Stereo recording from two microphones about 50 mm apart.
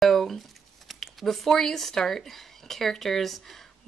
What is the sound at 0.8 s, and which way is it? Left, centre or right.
A woman's voice, centre.